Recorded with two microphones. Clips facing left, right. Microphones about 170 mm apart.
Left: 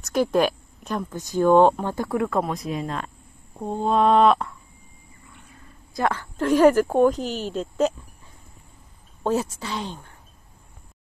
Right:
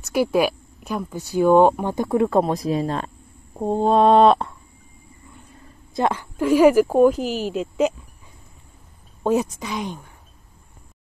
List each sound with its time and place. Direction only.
0.1 s speech: 10° right (ahead or behind)
2.2 s mantra: 35° right (ahead or behind)
5.9 s a woman's voice: 20° right (ahead or behind)
9.2 s speech: 15° right (ahead or behind)